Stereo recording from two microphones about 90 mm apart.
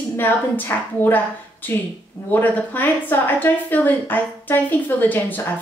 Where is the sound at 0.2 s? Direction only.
20° left (ahead or behind).